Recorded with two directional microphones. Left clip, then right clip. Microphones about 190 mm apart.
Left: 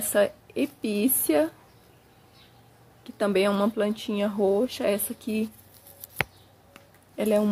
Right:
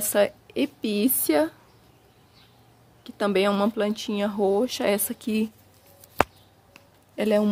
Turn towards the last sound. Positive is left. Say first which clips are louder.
# right 1 dB
turn(degrees=-15)  # may be behind; listen again after turning